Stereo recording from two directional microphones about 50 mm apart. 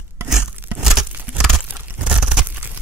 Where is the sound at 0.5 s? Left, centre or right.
Right.